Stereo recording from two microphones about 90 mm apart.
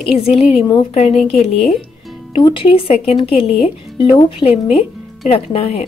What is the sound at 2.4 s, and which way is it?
A woman's voice, 80° left.